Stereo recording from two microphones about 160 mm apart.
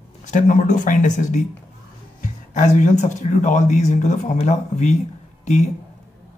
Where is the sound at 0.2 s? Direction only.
50° left (ahead or behind).